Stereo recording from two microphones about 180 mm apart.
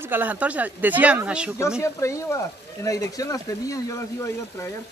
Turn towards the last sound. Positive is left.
turn(degrees=15)  # may be behind; listen again after turning